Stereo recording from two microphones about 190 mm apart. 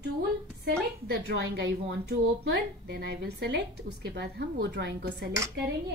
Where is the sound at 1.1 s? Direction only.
60° right (ahead or behind).